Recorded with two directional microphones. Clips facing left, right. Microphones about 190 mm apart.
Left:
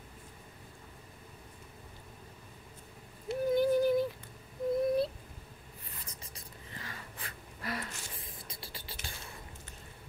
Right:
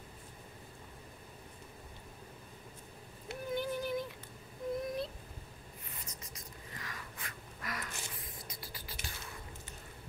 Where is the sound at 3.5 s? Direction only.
40° left (ahead or behind).